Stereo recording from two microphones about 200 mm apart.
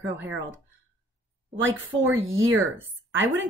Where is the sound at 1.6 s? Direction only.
75° right (ahead or behind).